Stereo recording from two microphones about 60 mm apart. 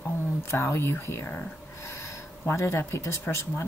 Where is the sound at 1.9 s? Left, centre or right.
Left.